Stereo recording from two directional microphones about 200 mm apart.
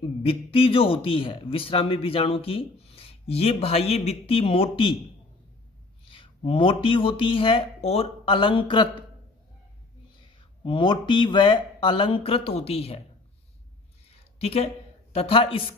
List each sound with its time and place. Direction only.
0.2 s a man's voice: 30° left (ahead or behind)
6.0 s speech: 25° left (ahead or behind)
10.6 s a man's voice: 25° left (ahead or behind)
14.0 s a sound: 30° left (ahead or behind)
15.1 s a man's voice: 30° left (ahead or behind)